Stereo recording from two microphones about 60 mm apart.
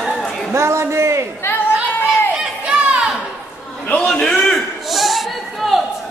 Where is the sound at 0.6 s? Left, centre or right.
Right.